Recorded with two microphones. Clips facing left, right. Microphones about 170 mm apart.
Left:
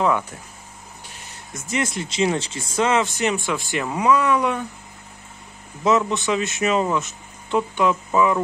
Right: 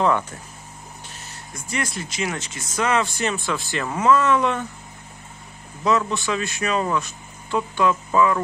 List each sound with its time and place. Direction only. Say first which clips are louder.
0.0 s speech: even; 10° left (ahead or behind)
1.5 s speech: left 3 dB; 20° left (ahead or behind)
5.9 s speech: left 2 dB; 20° left (ahead or behind)